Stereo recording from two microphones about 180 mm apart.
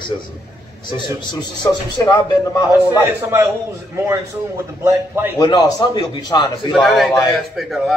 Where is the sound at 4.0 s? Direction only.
15° right (ahead or behind).